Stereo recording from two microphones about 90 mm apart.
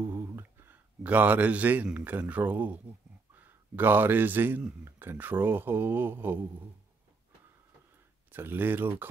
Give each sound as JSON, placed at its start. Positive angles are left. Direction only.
{"t": 0.0, "sound": "a sound", "side_deg": -30}
{"t": 2.0, "sound": "a man's voice", "side_deg": -20}
{"t": 8.3, "sound": "speech", "side_deg": -25}